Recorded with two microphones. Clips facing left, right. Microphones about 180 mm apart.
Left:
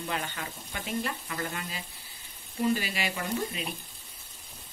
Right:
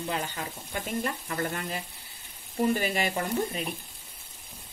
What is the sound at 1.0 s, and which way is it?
Speech, 45° right (ahead or behind).